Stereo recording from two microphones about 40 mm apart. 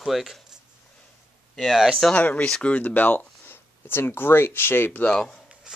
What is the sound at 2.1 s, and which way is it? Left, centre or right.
Speech, left.